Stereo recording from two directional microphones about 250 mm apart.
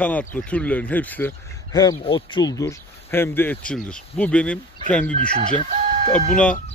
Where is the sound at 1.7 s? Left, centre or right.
Centre.